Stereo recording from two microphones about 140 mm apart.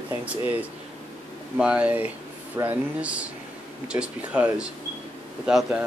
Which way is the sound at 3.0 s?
10° right (ahead or behind).